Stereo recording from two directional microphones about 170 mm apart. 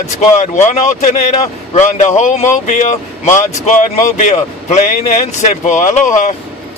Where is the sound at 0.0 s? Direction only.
40° left (ahead or behind).